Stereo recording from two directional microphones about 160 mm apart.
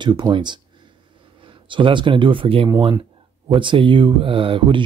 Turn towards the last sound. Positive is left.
turn(degrees=-35)  # may be behind; listen again after turning